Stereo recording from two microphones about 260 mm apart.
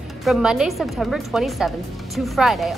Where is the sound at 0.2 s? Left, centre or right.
Centre.